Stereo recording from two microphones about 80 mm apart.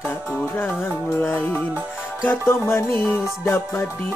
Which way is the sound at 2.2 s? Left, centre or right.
Left.